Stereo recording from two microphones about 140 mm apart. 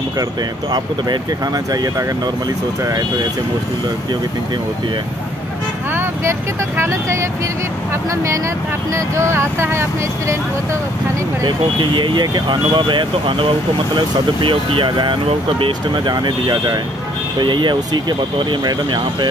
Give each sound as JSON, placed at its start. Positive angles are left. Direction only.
{"t": 1.7, "sound": "speech", "side_deg": -25}
{"t": 6.8, "sound": "speech", "side_deg": -20}
{"t": 8.9, "sound": "speech", "side_deg": -20}
{"t": 11.4, "sound": "speech", "side_deg": -35}